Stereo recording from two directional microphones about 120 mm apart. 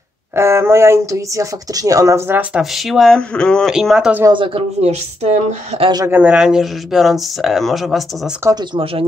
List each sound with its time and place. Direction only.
0.4 s speech: 20° right (ahead or behind)
2.5 s speech: centre (ahead or behind)
3.7 s speech: 5° right (ahead or behind)
4.3 s speech: 45° right (ahead or behind)
4.8 s speech: 60° right (ahead or behind)
6.0 s speech: 15° right (ahead or behind)
8.4 s speech: 20° right (ahead or behind)